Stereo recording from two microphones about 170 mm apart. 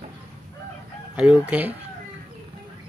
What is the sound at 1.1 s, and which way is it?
Speech, 5° right (ahead or behind).